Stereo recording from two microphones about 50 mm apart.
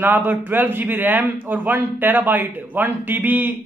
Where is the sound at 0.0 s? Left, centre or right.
Right.